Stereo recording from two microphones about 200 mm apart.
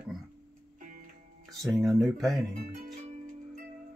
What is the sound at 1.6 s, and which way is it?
Speech, 15° right (ahead or behind).